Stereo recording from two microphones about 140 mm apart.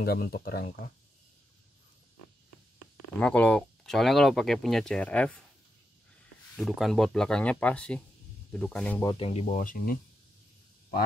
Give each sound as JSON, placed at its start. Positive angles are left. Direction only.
{"t": 0.0, "sound": "speech", "side_deg": 90}
{"t": 3.2, "sound": "speech", "side_deg": 10}
{"t": 6.5, "sound": "speech", "side_deg": 0}
{"t": 9.1, "sound": "speech", "side_deg": 45}